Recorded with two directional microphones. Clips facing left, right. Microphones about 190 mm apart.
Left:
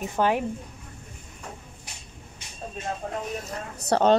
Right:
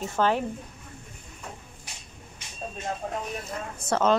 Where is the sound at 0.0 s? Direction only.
15° left (ahead or behind).